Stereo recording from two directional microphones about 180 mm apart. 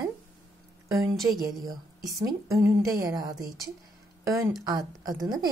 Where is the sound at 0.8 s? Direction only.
15° right (ahead or behind).